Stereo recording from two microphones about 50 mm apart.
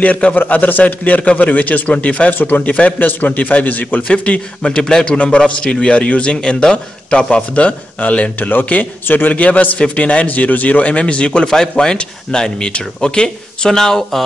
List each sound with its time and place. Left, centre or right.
0.0 s a man's voice: left
3.0 s a man's voice: left
4.1 s a man's voice: left
9.3 s a man's voice: left; by 14.2 s centre